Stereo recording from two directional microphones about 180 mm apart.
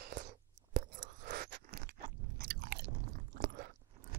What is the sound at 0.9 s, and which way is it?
Scrape, 45° right (ahead or behind).